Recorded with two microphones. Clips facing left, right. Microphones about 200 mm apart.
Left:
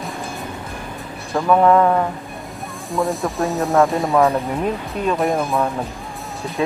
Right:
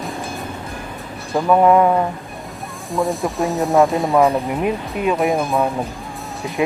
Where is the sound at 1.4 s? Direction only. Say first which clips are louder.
Right 1 dB; 10° right (ahead or behind).